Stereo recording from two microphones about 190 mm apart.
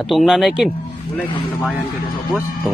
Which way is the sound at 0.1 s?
Centre (ahead or behind).